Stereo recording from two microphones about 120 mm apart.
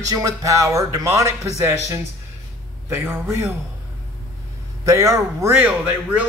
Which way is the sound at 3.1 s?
25° right (ahead or behind).